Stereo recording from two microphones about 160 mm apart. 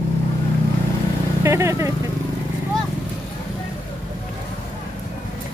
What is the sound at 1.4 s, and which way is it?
Speech, 15° right (ahead or behind).